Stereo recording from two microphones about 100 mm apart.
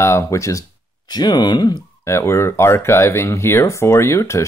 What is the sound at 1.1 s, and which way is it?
Speech, 45° left (ahead or behind).